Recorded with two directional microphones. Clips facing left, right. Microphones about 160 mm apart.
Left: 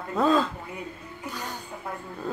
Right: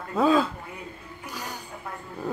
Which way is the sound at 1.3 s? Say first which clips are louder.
Left 1 dB; 10° right (ahead or behind).